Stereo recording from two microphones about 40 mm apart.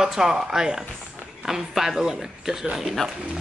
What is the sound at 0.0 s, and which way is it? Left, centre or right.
Speech, centre.